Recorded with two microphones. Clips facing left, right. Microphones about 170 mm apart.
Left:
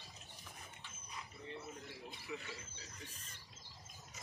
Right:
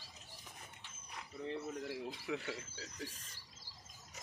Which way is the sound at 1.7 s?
75° right (ahead or behind).